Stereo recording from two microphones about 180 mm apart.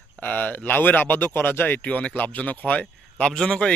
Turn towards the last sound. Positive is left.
turn(degrees=5)  # may be behind; listen again after turning